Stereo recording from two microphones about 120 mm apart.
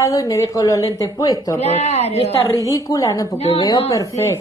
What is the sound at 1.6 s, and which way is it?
Speech, 65° left (ahead or behind).